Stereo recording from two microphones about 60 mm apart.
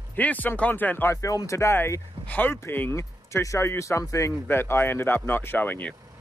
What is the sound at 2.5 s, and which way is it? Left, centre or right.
Speech, left.